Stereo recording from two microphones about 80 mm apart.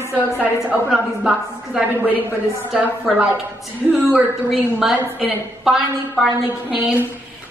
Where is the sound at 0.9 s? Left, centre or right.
Centre.